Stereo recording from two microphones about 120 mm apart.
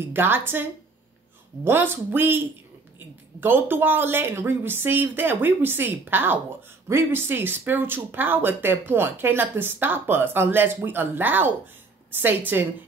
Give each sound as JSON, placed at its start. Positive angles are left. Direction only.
{"t": 0.1, "sound": "speech", "side_deg": -20}